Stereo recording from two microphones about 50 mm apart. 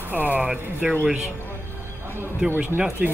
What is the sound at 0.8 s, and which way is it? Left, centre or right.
Speech, centre.